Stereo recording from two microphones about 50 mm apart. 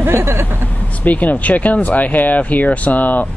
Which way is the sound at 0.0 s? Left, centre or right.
Right.